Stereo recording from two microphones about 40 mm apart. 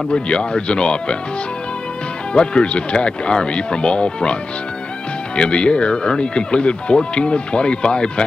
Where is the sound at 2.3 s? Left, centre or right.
Left.